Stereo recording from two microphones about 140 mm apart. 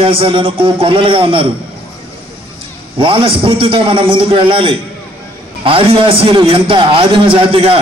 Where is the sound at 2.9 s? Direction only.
40° right (ahead or behind).